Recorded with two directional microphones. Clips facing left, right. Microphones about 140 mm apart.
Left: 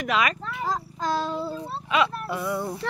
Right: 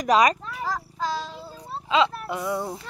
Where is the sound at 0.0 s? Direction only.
35° right (ahead or behind).